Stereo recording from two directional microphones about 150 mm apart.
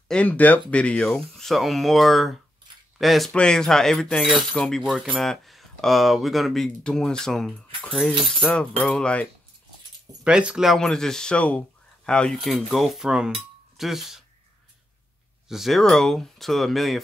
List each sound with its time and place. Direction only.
0.1 s speech: 10° left (ahead or behind)
10.2 s speech: 5° right (ahead or behind)
15.4 s speech: centre (ahead or behind)